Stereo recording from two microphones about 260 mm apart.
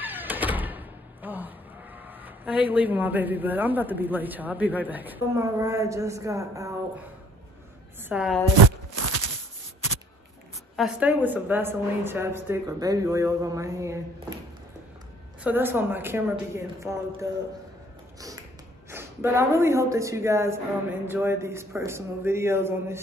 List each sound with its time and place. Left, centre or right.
0.0 s door: centre
2.0 s speech: centre
8.1 s speech: centre
8.5 s a sound: right
10.8 s speech: centre
15.4 s speech: centre
18.9 s speech: centre